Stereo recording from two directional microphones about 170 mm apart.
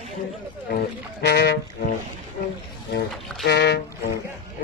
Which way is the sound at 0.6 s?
65° left (ahead or behind).